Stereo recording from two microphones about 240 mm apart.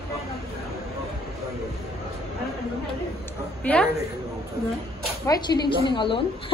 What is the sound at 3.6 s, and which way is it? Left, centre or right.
Speech, centre.